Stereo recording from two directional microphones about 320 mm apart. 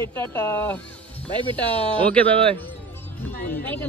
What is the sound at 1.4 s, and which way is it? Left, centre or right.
Speech, centre.